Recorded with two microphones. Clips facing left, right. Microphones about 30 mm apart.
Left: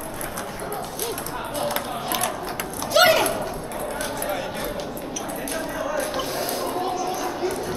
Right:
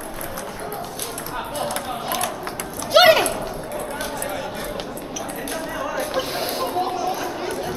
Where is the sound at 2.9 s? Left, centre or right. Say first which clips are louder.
Right 3 dB; right.